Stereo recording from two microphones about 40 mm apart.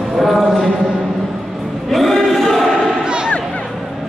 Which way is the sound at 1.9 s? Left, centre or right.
Centre.